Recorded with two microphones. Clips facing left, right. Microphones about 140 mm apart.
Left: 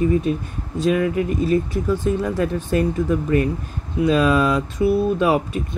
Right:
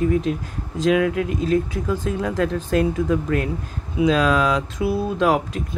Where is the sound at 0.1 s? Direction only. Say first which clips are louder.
Left 1 dB; 90° right.